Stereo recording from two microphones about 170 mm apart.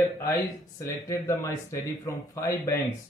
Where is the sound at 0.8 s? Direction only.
20° left (ahead or behind).